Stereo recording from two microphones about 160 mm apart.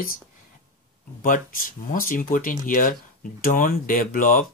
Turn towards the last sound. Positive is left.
turn(degrees=60)  # may be behind; listen again after turning